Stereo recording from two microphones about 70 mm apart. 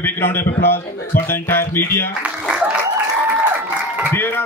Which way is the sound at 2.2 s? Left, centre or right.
Centre.